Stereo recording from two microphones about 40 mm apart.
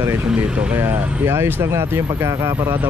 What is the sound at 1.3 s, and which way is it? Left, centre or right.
Speech, right.